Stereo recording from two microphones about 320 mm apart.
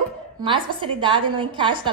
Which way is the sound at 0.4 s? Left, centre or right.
Centre.